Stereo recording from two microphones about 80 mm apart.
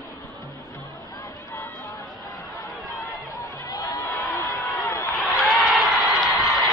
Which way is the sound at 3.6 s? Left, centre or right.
Left.